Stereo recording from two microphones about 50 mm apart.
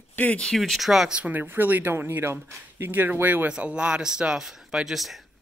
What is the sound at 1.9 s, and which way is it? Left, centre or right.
Speech, right.